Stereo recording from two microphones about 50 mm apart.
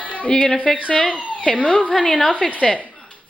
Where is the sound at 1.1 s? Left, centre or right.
Right.